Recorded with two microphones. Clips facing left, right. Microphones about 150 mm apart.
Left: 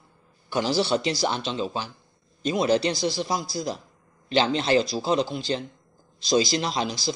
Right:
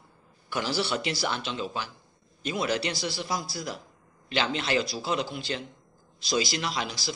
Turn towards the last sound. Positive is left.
turn(degrees=30)  # may be behind; listen again after turning